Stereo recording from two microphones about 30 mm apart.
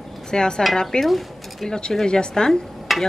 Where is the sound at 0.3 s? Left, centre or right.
Left.